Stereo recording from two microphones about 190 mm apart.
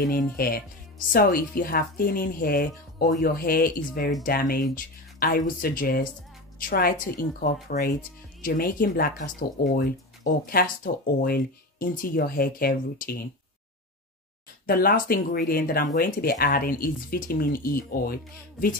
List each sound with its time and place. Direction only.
0.0 s a woman's voice: 50° left (ahead or behind)
14.7 s a woman's voice: 50° left (ahead or behind)